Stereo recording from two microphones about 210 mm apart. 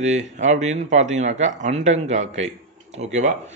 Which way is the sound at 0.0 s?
35° right (ahead or behind).